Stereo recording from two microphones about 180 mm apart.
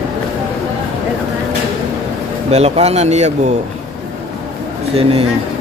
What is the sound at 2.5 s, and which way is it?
Speech, 35° right (ahead or behind).